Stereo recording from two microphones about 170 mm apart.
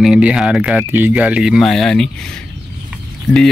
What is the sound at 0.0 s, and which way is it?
Speech, 5° right (ahead or behind).